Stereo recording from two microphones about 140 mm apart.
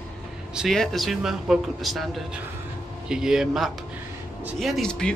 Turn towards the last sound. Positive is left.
turn(degrees=5)  # may be behind; listen again after turning